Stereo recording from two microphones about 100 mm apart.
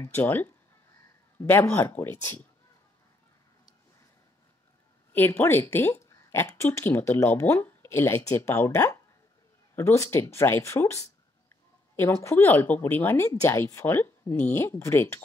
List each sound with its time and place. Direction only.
0.0 s speech: 20° left (ahead or behind)
5.1 s speech: 20° left (ahead or behind)